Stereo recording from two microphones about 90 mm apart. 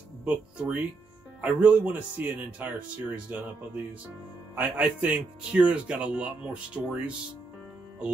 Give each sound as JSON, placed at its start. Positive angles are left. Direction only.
{"t": 0.2, "sound": "speech", "side_deg": -15}